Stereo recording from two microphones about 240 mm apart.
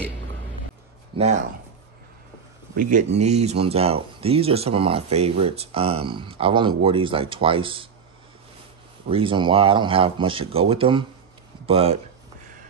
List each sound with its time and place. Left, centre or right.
1.1 s speech: right
2.7 s speech: right
9.1 s speech: right